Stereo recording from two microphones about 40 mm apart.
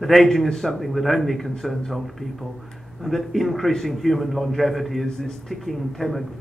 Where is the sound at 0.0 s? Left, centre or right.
Centre.